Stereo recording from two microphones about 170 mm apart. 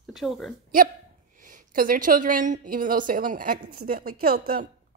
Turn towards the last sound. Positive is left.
turn(degrees=-60)  # may be behind; listen again after turning